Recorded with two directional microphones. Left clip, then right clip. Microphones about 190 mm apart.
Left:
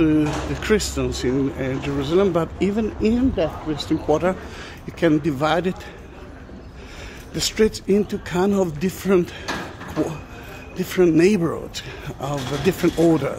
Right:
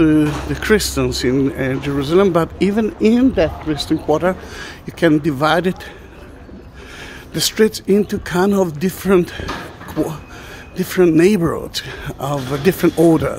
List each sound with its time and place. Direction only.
0.0 s speech: 25° right (ahead or behind)
7.3 s speech: 20° right (ahead or behind)
10.8 s speech: 15° right (ahead or behind)